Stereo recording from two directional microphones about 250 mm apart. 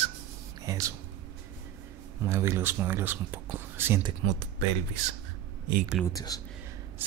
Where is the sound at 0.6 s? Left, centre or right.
Centre.